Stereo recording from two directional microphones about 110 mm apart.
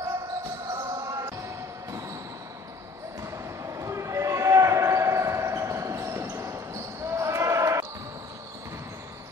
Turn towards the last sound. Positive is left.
turn(degrees=-30)  # may be behind; listen again after turning